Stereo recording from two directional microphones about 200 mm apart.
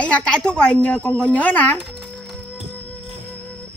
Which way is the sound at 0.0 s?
5° left (ahead or behind).